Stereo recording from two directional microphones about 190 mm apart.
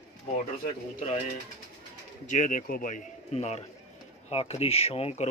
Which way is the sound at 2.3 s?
45° left (ahead or behind).